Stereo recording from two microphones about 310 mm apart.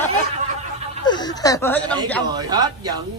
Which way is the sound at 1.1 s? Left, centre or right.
Centre.